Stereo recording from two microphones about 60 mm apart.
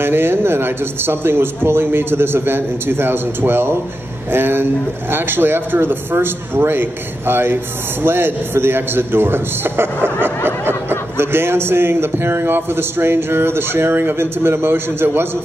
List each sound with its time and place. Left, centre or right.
0.0 s speech: right